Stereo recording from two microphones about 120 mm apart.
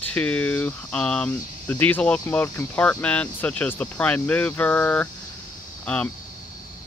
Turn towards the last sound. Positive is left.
turn(degrees=10)  # may be behind; listen again after turning